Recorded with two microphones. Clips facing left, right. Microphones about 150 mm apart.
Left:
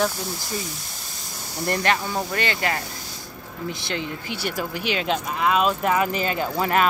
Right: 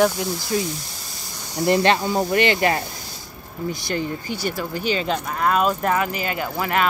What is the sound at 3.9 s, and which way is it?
Speech, 70° left (ahead or behind).